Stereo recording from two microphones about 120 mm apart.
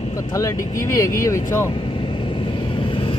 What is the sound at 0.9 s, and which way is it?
Speech, 25° left (ahead or behind).